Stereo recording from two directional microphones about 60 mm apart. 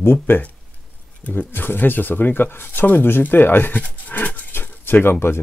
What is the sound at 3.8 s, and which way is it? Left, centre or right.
Dog, left.